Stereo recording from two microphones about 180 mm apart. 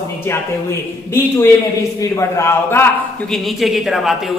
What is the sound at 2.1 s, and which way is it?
Speech, 15° left (ahead or behind).